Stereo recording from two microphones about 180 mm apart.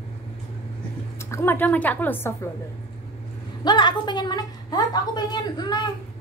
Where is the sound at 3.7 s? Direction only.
25° left (ahead or behind).